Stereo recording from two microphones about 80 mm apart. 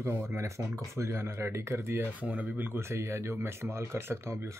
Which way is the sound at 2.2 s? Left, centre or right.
Centre.